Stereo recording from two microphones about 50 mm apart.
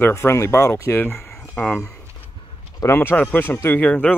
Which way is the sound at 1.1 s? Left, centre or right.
Left.